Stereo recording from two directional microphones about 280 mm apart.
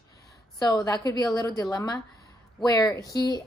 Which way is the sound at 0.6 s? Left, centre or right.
Centre.